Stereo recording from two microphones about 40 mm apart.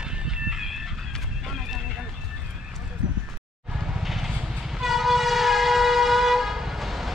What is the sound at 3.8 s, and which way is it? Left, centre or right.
Train, centre.